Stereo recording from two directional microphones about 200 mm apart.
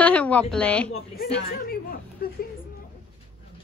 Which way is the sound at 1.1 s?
45° left (ahead or behind).